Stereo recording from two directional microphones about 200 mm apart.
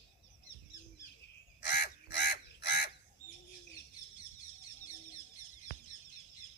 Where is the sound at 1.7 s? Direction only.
60° left (ahead or behind).